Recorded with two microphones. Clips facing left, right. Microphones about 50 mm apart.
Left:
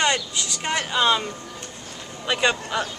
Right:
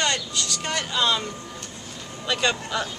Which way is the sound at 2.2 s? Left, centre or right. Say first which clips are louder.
Left 2 dB; centre.